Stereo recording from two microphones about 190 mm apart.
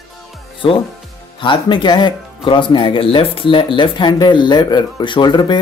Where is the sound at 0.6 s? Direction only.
25° left (ahead or behind).